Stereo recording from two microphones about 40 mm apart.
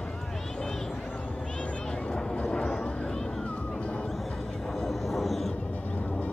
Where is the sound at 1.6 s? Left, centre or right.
Left.